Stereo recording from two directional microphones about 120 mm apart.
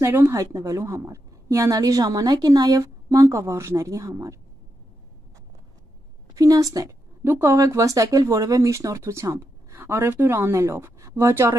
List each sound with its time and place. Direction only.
0.0 s a woman's voice: 20° right (ahead or behind)
6.3 s a woman's voice: 30° right (ahead or behind)